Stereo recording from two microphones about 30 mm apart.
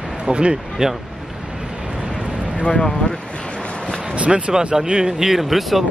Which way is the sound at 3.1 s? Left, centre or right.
Left.